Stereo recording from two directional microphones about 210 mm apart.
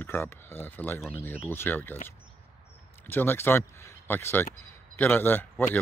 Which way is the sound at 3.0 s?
10° left (ahead or behind).